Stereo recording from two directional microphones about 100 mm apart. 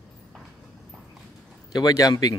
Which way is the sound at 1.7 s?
35° left (ahead or behind).